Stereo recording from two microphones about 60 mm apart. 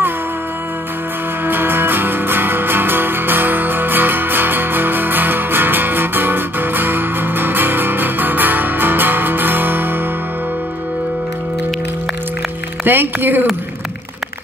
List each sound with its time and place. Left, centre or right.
1.4 s music: right
12.8 s speech: right